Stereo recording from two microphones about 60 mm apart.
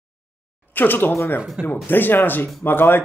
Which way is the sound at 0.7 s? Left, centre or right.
Left.